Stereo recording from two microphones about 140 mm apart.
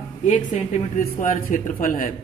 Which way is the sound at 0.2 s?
60° left (ahead or behind).